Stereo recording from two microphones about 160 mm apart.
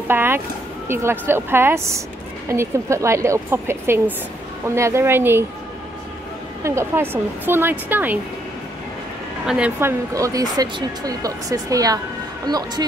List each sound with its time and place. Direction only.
0.1 s a woman's voice: 15° right (ahead or behind)
6.6 s a woman's voice: 15° right (ahead or behind)
9.5 s speech: 10° right (ahead or behind)